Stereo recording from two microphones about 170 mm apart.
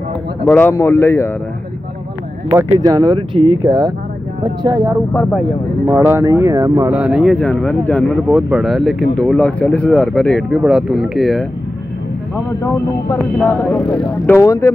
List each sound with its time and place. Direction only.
0.5 s speech: 10° left (ahead or behind)
2.5 s speech: 25° right (ahead or behind)
7.0 s speech: 5° right (ahead or behind)
13.1 s speech: 10° left (ahead or behind)